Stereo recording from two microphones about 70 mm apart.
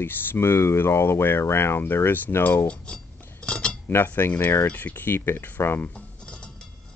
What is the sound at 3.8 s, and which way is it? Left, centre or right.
Speech, left.